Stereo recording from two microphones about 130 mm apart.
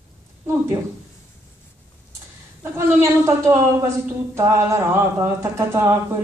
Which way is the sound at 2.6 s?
20° right (ahead or behind).